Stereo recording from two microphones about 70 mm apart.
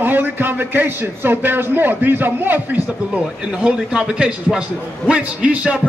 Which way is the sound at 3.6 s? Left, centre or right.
Centre.